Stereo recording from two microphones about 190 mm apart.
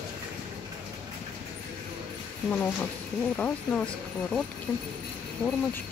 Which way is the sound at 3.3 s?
5° left (ahead or behind).